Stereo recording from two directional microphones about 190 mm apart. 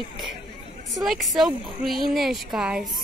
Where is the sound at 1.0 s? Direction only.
Centre (ahead or behind).